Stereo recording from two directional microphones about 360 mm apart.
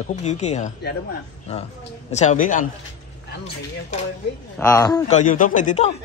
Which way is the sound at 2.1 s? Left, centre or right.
Centre.